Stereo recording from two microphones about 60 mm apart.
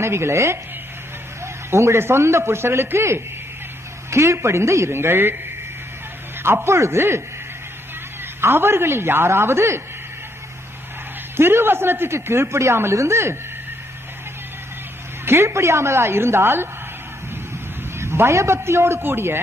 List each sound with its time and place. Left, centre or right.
0.0 s speech: right
6.4 s speech: right
8.4 s speech: right
11.3 s speech: right
15.2 s speech: right
17.9 s speech: right